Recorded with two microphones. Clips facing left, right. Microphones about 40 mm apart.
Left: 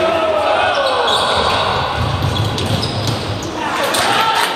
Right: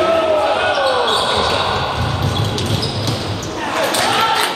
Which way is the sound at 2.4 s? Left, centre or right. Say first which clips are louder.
Left 1 dB; centre.